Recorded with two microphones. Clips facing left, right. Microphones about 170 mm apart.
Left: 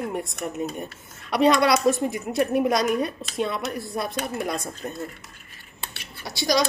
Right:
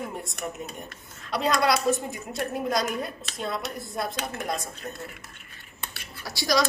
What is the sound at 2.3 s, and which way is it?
Speech, 70° left (ahead or behind).